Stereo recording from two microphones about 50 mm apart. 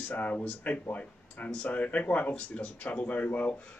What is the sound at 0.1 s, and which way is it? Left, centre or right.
A man's voice, left.